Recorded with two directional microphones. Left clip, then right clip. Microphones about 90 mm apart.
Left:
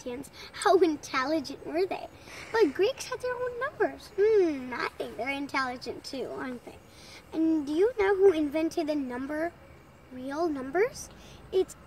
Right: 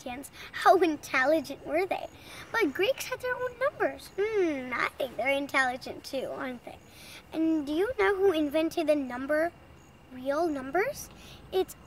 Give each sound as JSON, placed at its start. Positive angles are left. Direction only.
{"t": 0.0, "sound": "speech", "side_deg": -30}